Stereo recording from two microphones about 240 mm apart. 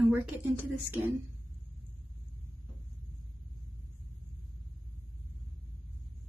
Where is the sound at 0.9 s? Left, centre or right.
Centre.